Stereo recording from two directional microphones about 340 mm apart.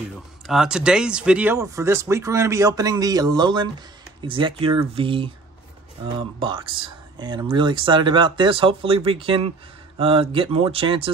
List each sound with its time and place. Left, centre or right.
0.5 s speech: centre